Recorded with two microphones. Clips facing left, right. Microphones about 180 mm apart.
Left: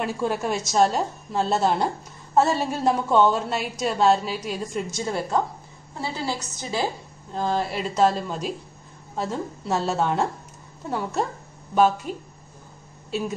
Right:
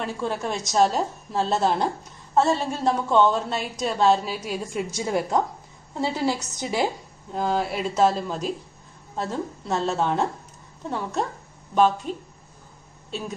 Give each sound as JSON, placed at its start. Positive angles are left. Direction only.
{"t": 0.0, "sound": "a woman's voice", "side_deg": 10}